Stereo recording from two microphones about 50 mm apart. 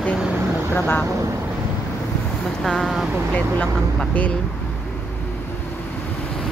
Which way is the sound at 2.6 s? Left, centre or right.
Centre.